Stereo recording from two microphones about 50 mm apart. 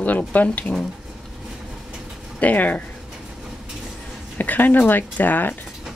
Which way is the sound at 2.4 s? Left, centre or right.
Left.